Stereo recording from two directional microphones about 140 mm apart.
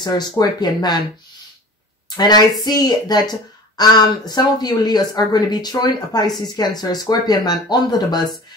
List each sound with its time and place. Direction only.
0.0 s speech: 30° left (ahead or behind)
2.0 s speech: 30° left (ahead or behind)